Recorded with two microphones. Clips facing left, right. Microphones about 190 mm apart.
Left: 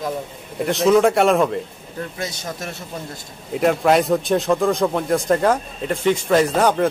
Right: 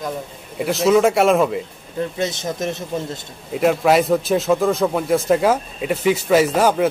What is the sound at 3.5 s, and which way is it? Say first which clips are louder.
A man's voice: right 1 dB; centre (ahead or behind).